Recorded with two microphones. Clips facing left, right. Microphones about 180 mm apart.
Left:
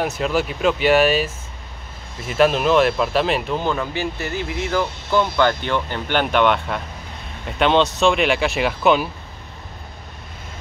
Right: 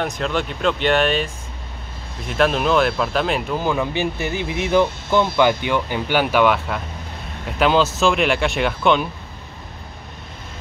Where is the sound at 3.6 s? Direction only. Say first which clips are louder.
Right 2 dB; 15° right (ahead or behind); by 9.0 s 5° left (ahead or behind).